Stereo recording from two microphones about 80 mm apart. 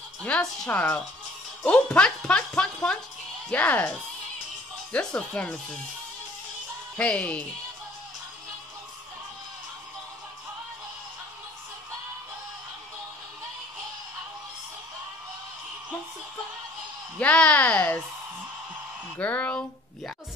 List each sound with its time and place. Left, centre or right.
0.2 s speech: centre
4.9 s speech: centre
7.0 s speech: centre
17.2 s speech: centre
19.1 s speech: centre